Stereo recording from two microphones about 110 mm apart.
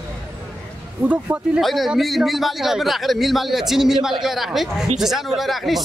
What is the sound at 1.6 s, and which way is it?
A man's voice, centre (ahead or behind).